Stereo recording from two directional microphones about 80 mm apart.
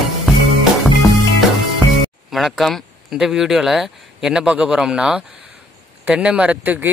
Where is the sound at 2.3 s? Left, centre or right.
Centre.